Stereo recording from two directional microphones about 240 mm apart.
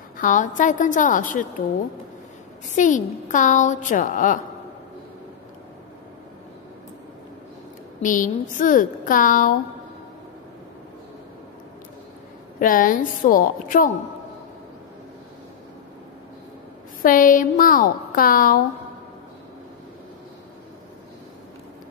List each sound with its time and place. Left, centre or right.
0.2 s a woman's voice: left
2.7 s a woman's voice: left
8.0 s a woman's voice: left
12.5 s a woman's voice: left
17.0 s a woman's voice: left